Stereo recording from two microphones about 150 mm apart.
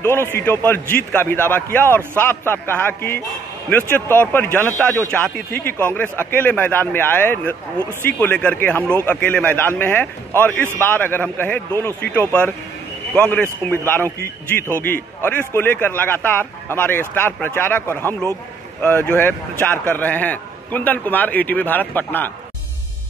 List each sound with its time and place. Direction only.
0.0 s a man's voice: 15° left (ahead or behind)